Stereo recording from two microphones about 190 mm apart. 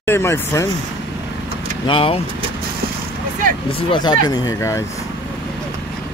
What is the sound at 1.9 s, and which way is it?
Speech, 30° left (ahead or behind).